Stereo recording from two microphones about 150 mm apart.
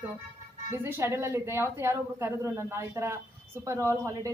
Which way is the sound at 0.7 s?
15° right (ahead or behind).